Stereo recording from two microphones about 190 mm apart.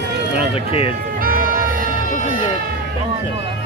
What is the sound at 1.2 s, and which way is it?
Music, 50° right (ahead or behind).